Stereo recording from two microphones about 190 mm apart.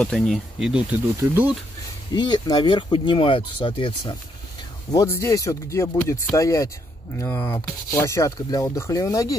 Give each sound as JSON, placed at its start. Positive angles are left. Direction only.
{"t": 0.0, "sound": "speech", "side_deg": 5}
{"t": 2.1, "sound": "speech", "side_deg": 25}
{"t": 4.9, "sound": "speech", "side_deg": 15}